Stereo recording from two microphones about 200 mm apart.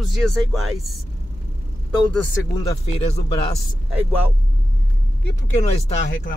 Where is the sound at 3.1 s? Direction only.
30° left (ahead or behind).